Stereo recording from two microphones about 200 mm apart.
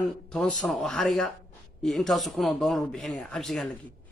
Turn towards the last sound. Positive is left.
turn(degrees=0)  # may be behind; listen again after turning